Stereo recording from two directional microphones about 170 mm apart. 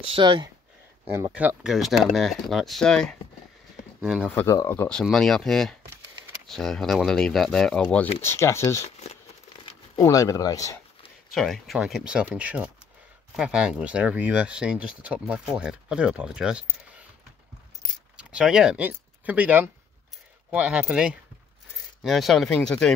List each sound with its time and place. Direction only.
0.1 s speech: 25° right (ahead or behind)
1.1 s speech: 10° right (ahead or behind); by 8.8 s 15° left (ahead or behind)
8.8 s a sound: 40° left (ahead or behind)
9.9 s speech: 20° left (ahead or behind)
11.3 s speech: centre (ahead or behind)
18.1 s speech: 5° right (ahead or behind)